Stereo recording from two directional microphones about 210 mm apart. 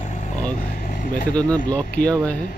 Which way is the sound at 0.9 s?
40° left (ahead or behind).